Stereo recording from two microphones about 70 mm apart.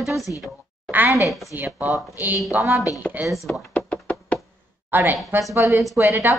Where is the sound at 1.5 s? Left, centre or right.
Right.